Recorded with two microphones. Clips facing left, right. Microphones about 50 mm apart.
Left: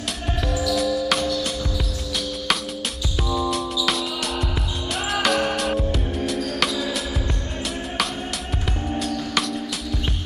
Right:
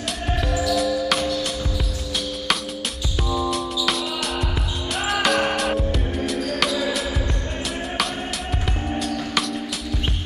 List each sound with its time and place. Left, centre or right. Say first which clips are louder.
0.4 s music: even; centre
0.7 s music: left 1 dB; centre
3.3 s music: even; centre
9.3 s music: left 1 dB; centre